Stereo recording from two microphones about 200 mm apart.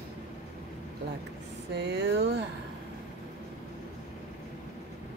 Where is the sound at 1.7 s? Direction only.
60° right (ahead or behind).